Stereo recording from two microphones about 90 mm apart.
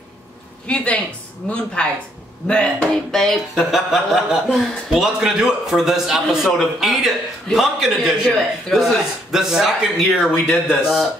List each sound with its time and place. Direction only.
0.7 s a woman's voice: 10° left (ahead or behind); by 10.3 s 5° right (ahead or behind)
10.3 s speech: 20° left (ahead or behind)